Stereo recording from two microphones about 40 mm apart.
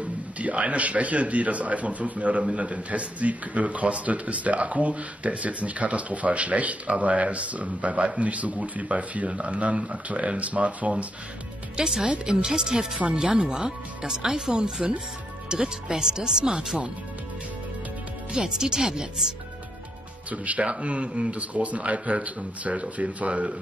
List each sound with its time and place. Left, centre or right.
0.4 s speech: right
11.7 s speech: centre
18.3 s speech: centre
20.2 s speech: right